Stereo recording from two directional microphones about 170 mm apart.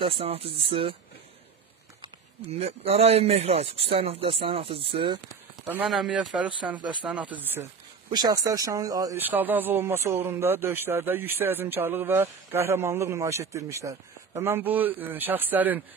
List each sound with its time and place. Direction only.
0.0 s speech: 35° right (ahead or behind)
2.6 s speech: 40° right (ahead or behind)
5.7 s speech: 5° right (ahead or behind)
6.8 s speech: 25° right (ahead or behind)
7.1 s speech: 5° right (ahead or behind)
8.1 s speech: 20° right (ahead or behind)
9.2 s speech: 10° right (ahead or behind)